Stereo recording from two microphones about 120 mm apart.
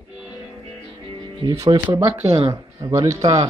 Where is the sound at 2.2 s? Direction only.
55° right (ahead or behind).